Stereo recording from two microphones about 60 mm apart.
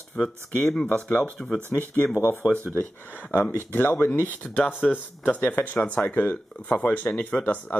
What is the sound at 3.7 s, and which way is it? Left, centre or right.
Speech, left.